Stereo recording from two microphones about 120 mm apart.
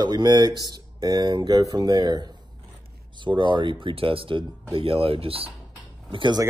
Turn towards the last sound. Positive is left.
turn(degrees=-45)  # may be behind; listen again after turning